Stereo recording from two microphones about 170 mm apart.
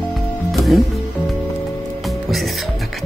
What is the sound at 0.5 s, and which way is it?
Music, centre (ahead or behind).